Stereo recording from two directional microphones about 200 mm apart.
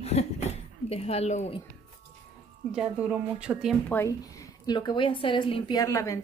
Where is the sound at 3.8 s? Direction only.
15° left (ahead or behind).